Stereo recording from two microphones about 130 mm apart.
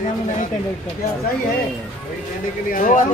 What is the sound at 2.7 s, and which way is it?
Speech, 90° left.